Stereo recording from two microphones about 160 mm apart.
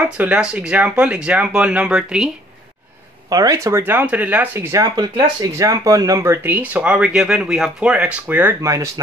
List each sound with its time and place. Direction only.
0.2 s speech: 5° right (ahead or behind)
3.3 s speech: 20° right (ahead or behind)